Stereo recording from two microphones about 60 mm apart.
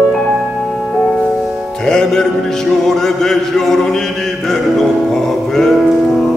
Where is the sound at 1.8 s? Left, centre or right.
Centre.